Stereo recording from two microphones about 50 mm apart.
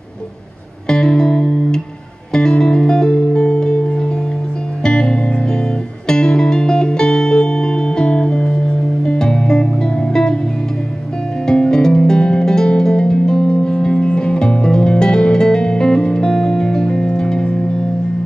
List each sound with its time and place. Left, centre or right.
0.8 s music: centre
11.4 s music: centre